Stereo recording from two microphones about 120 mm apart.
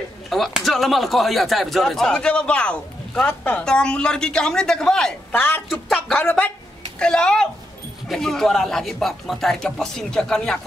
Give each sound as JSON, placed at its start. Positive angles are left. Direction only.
{"t": 0.3, "sound": "speech", "side_deg": 0}
{"t": 5.3, "sound": "speech", "side_deg": 15}